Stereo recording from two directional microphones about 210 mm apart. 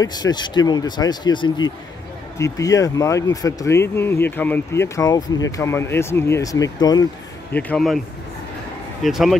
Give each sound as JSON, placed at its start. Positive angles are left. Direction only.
{"t": 0.0, "sound": "speech", "side_deg": 20}
{"t": 7.5, "sound": "speech", "side_deg": 5}
{"t": 9.0, "sound": "speech", "side_deg": 0}